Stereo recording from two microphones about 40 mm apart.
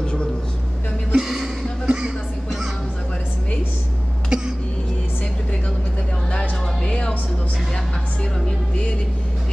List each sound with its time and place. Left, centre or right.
0.0 s a sound: left
1.1 s a sound: centre
2.0 s music: centre
4.3 s cough: right
6.8 s music: left
8.5 s vehicle: left